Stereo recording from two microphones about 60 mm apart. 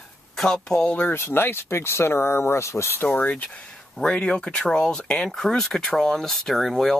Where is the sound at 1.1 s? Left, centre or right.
Left.